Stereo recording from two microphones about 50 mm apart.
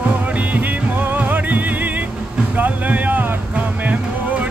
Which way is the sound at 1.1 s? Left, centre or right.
Right.